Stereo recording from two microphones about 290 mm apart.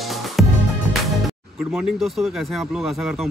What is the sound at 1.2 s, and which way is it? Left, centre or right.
Speech, centre.